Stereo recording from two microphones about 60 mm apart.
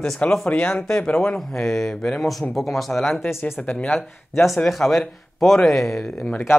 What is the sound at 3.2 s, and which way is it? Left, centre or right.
Speech, left.